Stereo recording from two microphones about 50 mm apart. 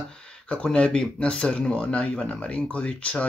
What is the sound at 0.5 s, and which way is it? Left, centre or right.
Speech, left.